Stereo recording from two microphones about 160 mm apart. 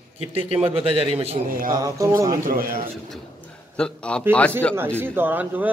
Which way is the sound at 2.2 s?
65° right (ahead or behind).